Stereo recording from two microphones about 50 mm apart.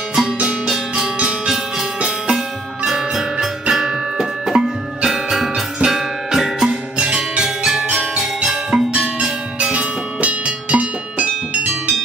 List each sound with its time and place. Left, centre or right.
0.7 s music: centre; by 11.9 s right